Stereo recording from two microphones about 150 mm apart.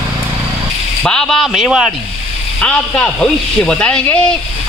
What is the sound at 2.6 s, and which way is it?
Speech, 10° left (ahead or behind).